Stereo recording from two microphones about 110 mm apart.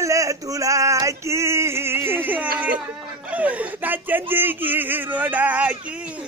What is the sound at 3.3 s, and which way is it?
Chuckle, 15° right (ahead or behind).